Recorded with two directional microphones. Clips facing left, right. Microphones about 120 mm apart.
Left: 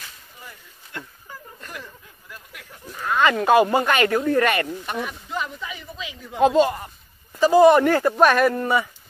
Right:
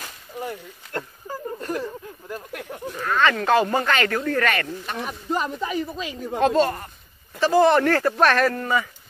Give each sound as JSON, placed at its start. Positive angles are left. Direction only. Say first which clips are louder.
{"t": 0.0, "sound": "a sound", "louder": "right 11 dB", "side_deg": -65}
{"t": 0.9, "sound": "a sound", "louder": "right 7 dB", "side_deg": -40}
{"t": 2.5, "sound": "speech", "louder": "right 11 dB", "side_deg": -60}
{"t": 3.1, "sound": "speech", "louder": "left 2 dB", "side_deg": 15}
{"t": 5.0, "sound": "speech", "louder": "right 4 dB", "side_deg": -40}
{"t": 6.4, "sound": "speech", "louder": "left 3 dB", "side_deg": 10}